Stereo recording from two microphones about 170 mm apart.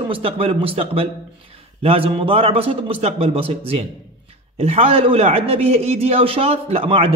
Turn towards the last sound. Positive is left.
turn(degrees=-35)  # may be behind; listen again after turning